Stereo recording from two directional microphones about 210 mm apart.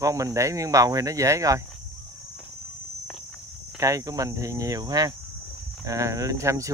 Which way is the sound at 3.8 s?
15° right (ahead or behind).